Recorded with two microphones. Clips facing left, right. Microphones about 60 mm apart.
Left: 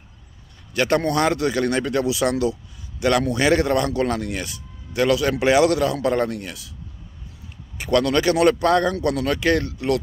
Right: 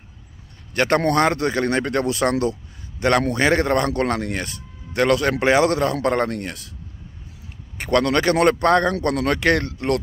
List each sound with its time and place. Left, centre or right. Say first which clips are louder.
0.7 s a man's voice: right 2 dB; right
5.9 s a man's voice: right 1 dB; right
7.7 s a man's voice: even; right